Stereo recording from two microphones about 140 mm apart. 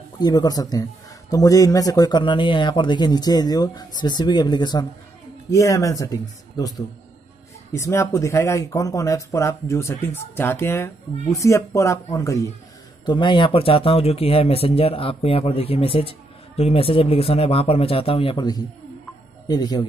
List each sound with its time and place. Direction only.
0.2 s speech: 25° left (ahead or behind)
7.7 s speech: 20° left (ahead or behind)
13.0 s speech: 35° left (ahead or behind)